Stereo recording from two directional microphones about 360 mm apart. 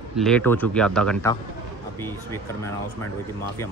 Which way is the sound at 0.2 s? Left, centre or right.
Centre.